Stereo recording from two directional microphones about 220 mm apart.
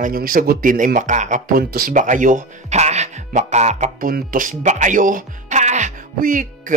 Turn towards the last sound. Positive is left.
turn(degrees=-35)  # may be behind; listen again after turning